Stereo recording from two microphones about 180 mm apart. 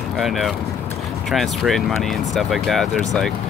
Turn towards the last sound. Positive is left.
turn(degrees=0)  # may be behind; listen again after turning